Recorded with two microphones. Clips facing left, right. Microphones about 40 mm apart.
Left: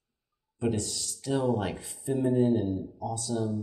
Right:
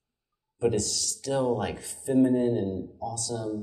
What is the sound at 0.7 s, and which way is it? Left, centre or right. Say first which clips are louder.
Speech: right 4 dB; left.